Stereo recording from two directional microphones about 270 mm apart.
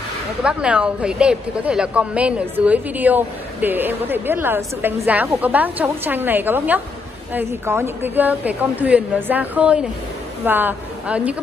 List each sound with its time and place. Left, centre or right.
0.4 s a woman's voice: centre